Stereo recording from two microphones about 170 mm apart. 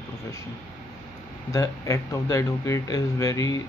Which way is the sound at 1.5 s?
20° left (ahead or behind).